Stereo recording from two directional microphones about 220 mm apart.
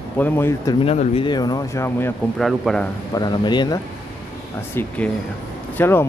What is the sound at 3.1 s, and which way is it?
Speech, 20° left (ahead or behind).